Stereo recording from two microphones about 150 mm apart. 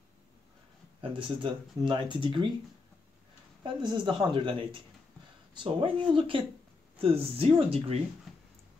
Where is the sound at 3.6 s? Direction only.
30° right (ahead or behind).